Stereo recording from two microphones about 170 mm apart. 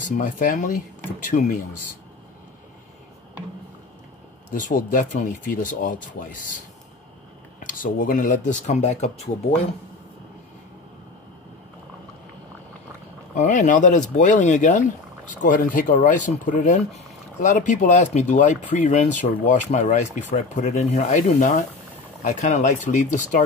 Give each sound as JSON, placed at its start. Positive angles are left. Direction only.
{"t": 0.0, "sound": "speech", "side_deg": 50}
{"t": 4.6, "sound": "speech", "side_deg": 50}
{"t": 7.6, "sound": "speech", "side_deg": 50}
{"t": 13.3, "sound": "speech", "side_deg": 45}